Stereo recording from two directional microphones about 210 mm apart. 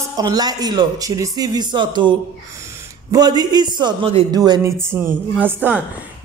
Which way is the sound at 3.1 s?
20° right (ahead or behind).